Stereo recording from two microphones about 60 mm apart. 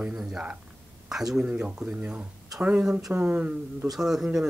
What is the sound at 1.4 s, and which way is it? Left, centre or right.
Speech, right.